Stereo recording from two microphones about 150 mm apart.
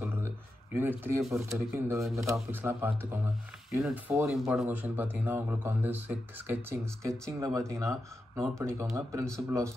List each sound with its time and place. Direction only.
0.0 s a sound: 15° right (ahead or behind)
0.7 s a man's voice: 15° right (ahead or behind)
3.7 s a man's voice: centre (ahead or behind); by 9.7 s 20° right (ahead or behind)